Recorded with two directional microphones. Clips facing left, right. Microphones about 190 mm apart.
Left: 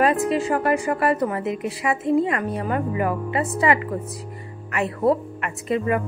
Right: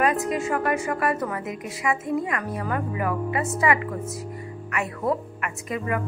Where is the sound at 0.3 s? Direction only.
30° left (ahead or behind).